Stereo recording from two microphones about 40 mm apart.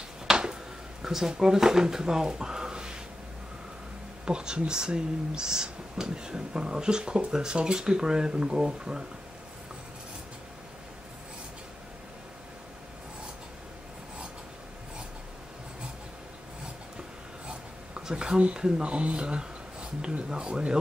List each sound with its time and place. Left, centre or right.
0.3 s a sound: centre
1.0 s speech: centre
4.3 s speech: centre
18.0 s speech: centre